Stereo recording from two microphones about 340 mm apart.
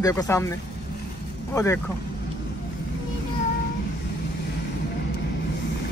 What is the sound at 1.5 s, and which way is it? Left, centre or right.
Speech, centre.